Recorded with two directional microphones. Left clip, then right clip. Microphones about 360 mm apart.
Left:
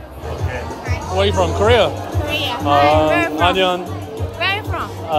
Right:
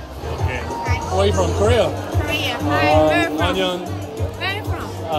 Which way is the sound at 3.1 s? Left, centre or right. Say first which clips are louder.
Left 3 dB; centre.